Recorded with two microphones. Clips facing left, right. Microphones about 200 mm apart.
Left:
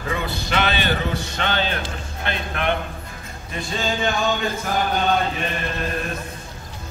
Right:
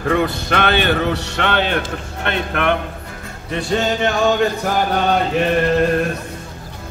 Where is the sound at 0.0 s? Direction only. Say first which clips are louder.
Right 8 dB; 55° right (ahead or behind).